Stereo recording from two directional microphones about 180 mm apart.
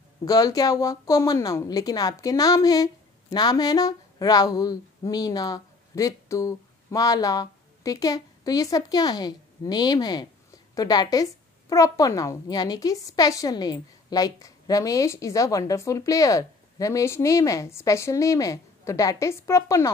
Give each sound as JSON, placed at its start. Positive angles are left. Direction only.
{"t": 0.2, "sound": "a woman's voice", "side_deg": 20}